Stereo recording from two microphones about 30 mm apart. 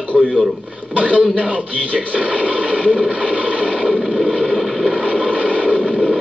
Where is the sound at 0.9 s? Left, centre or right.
Left.